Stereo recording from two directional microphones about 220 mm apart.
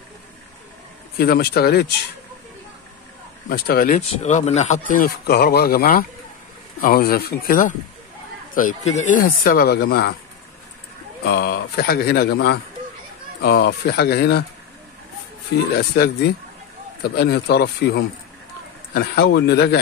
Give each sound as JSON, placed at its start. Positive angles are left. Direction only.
{"t": 1.1, "sound": "speech", "side_deg": 45}
{"t": 3.4, "sound": "speech", "side_deg": 45}
{"t": 11.2, "sound": "speech", "side_deg": 50}
{"t": 15.7, "sound": "speech", "side_deg": 45}